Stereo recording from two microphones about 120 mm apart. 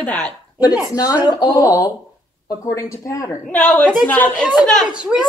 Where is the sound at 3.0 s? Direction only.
30° left (ahead or behind).